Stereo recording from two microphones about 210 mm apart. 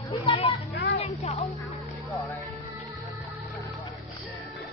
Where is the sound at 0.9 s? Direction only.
30° left (ahead or behind).